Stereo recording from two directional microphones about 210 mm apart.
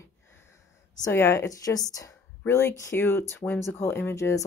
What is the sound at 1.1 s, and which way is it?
Speech, 10° left (ahead or behind).